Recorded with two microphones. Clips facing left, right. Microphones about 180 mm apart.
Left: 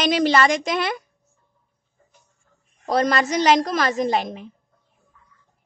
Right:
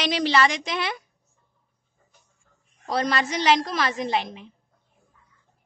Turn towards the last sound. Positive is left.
turn(degrees=45)  # may be behind; listen again after turning